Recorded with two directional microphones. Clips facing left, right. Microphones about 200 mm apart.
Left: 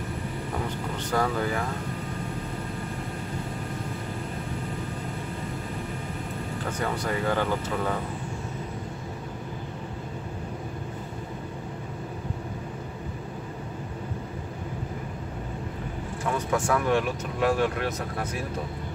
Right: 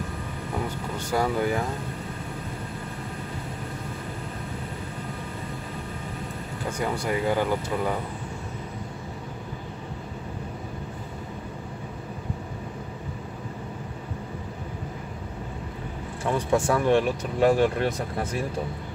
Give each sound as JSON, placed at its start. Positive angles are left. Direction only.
{"t": 0.9, "sound": "speech", "side_deg": -10}
{"t": 6.8, "sound": "speech", "side_deg": -10}
{"t": 16.3, "sound": "speech", "side_deg": -30}